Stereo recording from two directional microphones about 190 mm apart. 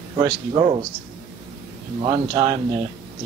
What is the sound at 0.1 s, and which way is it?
Speech, 25° right (ahead or behind).